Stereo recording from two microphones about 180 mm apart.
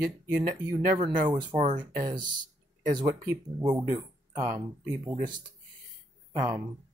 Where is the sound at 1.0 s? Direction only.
25° right (ahead or behind).